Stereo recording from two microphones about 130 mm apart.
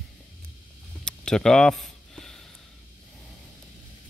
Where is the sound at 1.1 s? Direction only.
5° left (ahead or behind).